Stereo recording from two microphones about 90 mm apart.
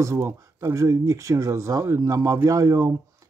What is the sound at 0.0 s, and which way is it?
Speech, 35° right (ahead or behind).